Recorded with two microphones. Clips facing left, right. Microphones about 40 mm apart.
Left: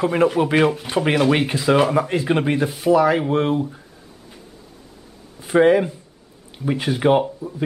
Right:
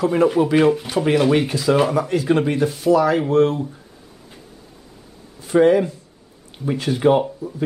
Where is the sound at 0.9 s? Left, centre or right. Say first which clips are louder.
Right 1 dB; left.